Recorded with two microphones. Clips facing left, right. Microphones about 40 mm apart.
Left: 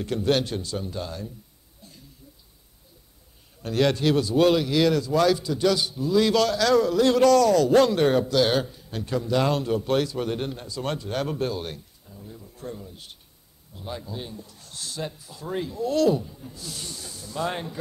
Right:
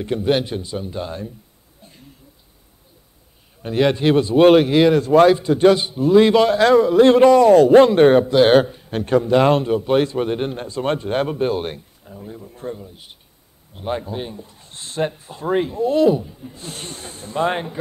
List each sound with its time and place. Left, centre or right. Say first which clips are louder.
0.0 s a man's voice: right 4 dB; right
1.8 s a sound: right 3 dB; right
3.6 s speech: right 5 dB; right
9.7 s a man's voice: right 6 dB; right
11.2 s a man's voice: right 7 dB; right
11.5 s speech: right 8 dB; right
12.7 s a man's voice: right 3 dB; centre
13.7 s speech: right 10 dB; right
16.6 s speech: right 5 dB; right